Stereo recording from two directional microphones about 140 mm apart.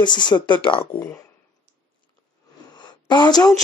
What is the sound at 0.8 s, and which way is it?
Speech, 15° left (ahead or behind).